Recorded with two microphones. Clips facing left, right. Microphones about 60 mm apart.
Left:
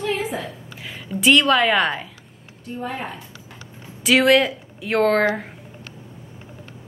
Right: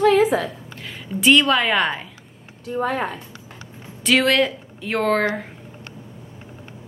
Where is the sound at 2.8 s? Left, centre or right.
Right.